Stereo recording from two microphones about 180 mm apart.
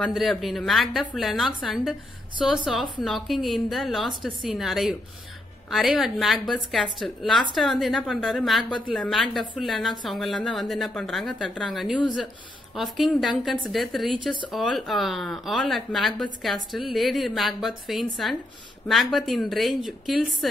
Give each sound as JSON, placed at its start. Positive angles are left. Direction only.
{"t": 0.0, "sound": "a woman's voice", "side_deg": 0}
{"t": 14.1, "sound": "speech", "side_deg": -25}
{"t": 14.5, "sound": "a woman's voice", "side_deg": 0}